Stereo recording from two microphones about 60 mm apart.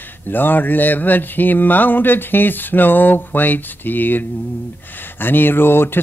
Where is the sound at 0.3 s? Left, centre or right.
Left.